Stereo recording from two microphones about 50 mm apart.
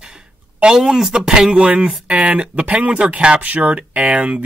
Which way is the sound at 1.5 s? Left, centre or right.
Right.